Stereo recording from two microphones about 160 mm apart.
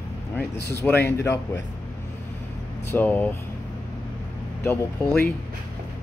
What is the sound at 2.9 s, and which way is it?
Speech, 10° left (ahead or behind).